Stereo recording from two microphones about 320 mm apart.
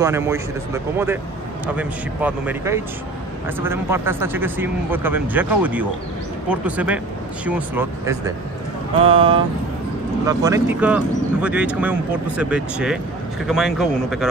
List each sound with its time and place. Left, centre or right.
0.0 s speech: centre